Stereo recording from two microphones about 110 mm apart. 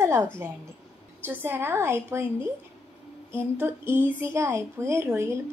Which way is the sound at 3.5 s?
20° right (ahead or behind).